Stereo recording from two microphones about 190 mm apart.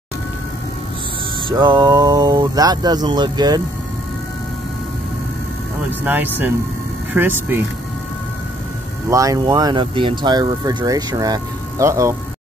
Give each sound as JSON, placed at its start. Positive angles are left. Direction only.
{"t": 1.6, "sound": "speech", "side_deg": -20}
{"t": 5.9, "sound": "speech", "side_deg": -10}
{"t": 9.1, "sound": "speech", "side_deg": -15}